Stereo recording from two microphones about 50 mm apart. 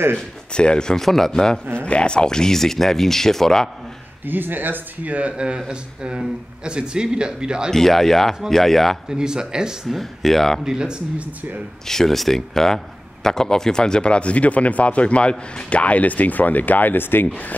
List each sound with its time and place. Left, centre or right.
0.6 s speech: centre
1.8 s speech: left
4.3 s speech: right
5.1 s speech: right
7.7 s speech: centre
9.1 s speech: centre
9.8 s speech: centre
10.6 s speech: centre
11.9 s speech: centre; by 17.3 s left